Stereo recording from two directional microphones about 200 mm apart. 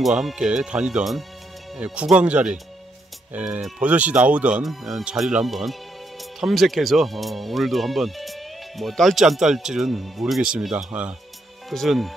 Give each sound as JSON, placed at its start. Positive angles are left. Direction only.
{"t": 0.0, "sound": "speech", "side_deg": 0}